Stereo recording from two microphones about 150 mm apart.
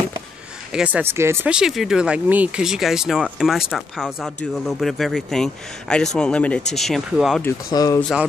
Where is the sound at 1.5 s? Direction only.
5° right (ahead or behind).